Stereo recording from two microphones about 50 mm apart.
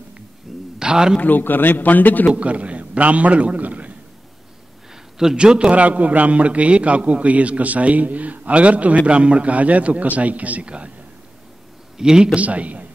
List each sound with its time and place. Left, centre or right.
0.7 s a sound: centre
1.2 s a man's voice: left
2.3 s a man's voice: right
5.2 s speech: centre
5.8 s a man's voice: right
12.0 s speech: centre
12.4 s a man's voice: right